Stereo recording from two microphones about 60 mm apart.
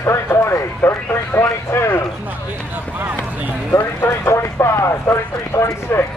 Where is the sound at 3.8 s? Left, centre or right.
Left.